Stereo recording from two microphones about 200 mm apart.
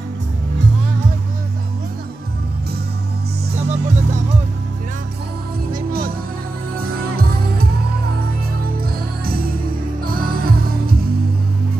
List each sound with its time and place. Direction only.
3.5 s music: 35° right (ahead or behind)
6.7 s music: 50° right (ahead or behind)
10.0 s music: 45° right (ahead or behind)